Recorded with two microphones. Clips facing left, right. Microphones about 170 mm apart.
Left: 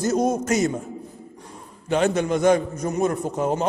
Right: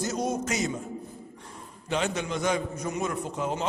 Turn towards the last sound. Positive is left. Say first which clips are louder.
# left 7 dB
turn(degrees=45)  # may be behind; listen again after turning